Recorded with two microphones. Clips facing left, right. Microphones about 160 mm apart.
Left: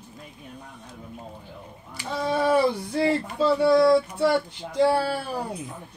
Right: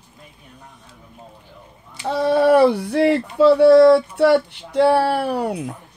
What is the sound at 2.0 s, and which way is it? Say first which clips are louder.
Speech: right 8 dB; 70° right (ahead or behind).